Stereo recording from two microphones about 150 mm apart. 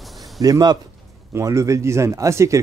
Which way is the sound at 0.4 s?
25° right (ahead or behind).